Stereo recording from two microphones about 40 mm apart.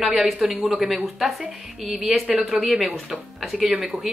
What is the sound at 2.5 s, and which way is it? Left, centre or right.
Speech, centre.